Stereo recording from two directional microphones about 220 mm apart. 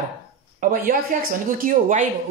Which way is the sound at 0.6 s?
40° right (ahead or behind).